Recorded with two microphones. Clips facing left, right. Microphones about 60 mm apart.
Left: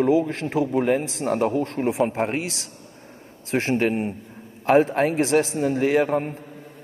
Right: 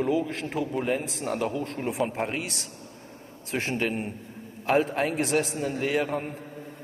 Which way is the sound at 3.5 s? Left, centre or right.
Left.